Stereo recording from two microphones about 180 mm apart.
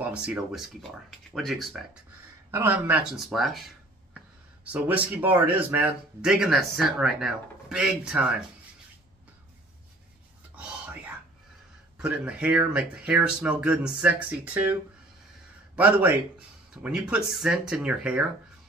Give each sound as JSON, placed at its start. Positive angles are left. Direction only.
{"t": 0.0, "sound": "speech", "side_deg": -5}
{"t": 4.7, "sound": "speech", "side_deg": -10}
{"t": 10.5, "sound": "whispering", "side_deg": -5}
{"t": 12.0, "sound": "speech", "side_deg": -5}